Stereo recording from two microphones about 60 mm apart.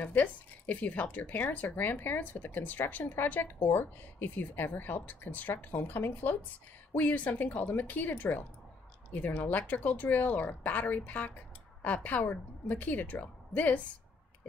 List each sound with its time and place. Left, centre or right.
0.0 s a woman's voice: left